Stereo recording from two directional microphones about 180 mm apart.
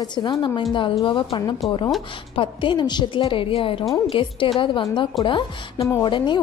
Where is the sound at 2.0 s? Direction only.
30° left (ahead or behind).